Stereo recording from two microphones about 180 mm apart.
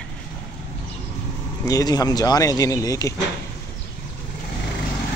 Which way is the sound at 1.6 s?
20° left (ahead or behind).